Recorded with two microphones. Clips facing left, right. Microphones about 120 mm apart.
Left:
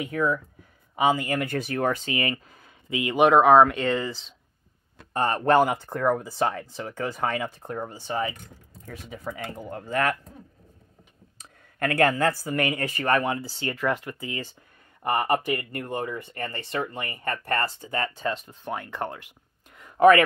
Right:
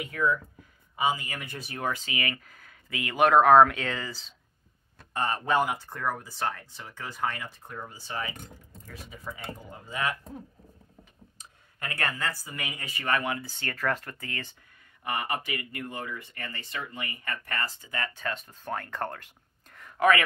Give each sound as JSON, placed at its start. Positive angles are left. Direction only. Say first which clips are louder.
{"t": 0.1, "sound": "speech", "louder": "left 2 dB", "side_deg": 25}
{"t": 1.0, "sound": "speech", "louder": "left 6 dB", "side_deg": 70}
{"t": 1.7, "sound": "speech", "louder": "left 3 dB", "side_deg": 50}
{"t": 2.1, "sound": "speech", "louder": "left 5 dB", "side_deg": 30}
{"t": 3.3, "sound": "speech", "louder": "left 1 dB", "side_deg": 5}
{"t": 5.1, "sound": "speech", "louder": "left 6 dB", "side_deg": 50}
{"t": 9.3, "sound": "speech", "louder": "left 6 dB", "side_deg": 60}
{"t": 11.8, "sound": "speech", "louder": "left 11 dB", "side_deg": 55}
{"t": 12.6, "sound": "speech", "louder": "left 12 dB", "side_deg": 90}
{"t": 12.9, "sound": "speech", "louder": "left 2 dB", "side_deg": 40}
{"t": 13.7, "sound": "speech", "louder": "left 4 dB", "side_deg": 15}
{"t": 15.0, "sound": "speech", "louder": "left 8 dB", "side_deg": 55}